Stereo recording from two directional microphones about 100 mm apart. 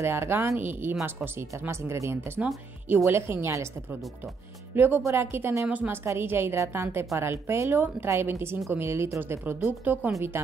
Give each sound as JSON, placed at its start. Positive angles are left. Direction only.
{"t": 0.0, "sound": "a woman's voice", "side_deg": -25}
{"t": 4.7, "sound": "a woman's voice", "side_deg": -20}
{"t": 5.7, "sound": "a woman's voice", "side_deg": -15}